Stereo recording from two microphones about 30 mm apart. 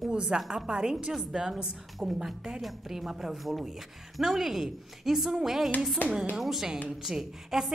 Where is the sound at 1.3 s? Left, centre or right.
Centre.